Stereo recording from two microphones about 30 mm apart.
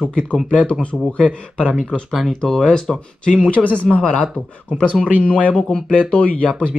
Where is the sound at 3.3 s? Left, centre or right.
Left.